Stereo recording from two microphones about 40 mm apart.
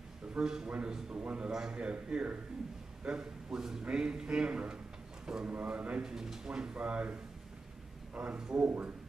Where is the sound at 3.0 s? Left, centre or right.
Right.